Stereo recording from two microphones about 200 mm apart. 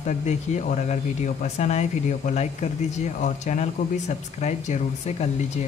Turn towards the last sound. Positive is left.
turn(degrees=35)  # may be behind; listen again after turning